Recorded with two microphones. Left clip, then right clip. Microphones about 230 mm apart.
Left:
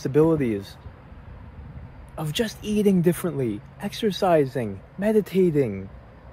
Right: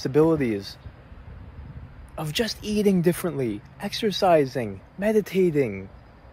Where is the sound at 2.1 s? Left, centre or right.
Centre.